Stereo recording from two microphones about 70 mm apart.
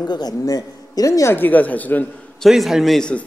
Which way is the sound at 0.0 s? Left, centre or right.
Left.